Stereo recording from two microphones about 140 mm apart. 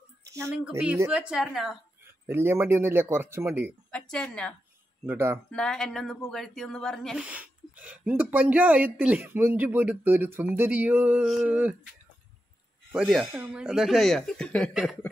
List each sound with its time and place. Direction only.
0.2 s a sound: 20° right (ahead or behind)
0.8 s speech: 15° right (ahead or behind)
2.2 s speech: 15° right (ahead or behind)
4.1 s speech: 5° left (ahead or behind)
5.0 s speech: 15° right (ahead or behind)
5.5 s speech: 5° left (ahead or behind)
7.2 s speech: 10° right (ahead or behind)
12.9 s speech: 5° right (ahead or behind)
14.7 s speech: 5° right (ahead or behind)